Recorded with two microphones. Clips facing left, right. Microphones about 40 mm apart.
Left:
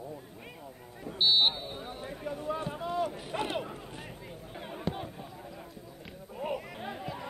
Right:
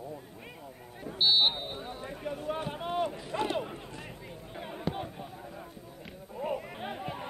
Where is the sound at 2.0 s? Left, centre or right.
Right.